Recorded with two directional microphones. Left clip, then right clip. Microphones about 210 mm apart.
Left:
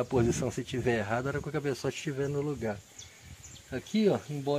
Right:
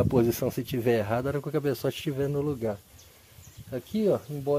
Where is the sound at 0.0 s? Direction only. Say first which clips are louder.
Right 4 dB; 45° right (ahead or behind).